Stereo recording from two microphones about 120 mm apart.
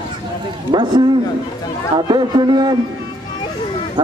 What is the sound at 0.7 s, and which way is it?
A man's voice, 40° right (ahead or behind).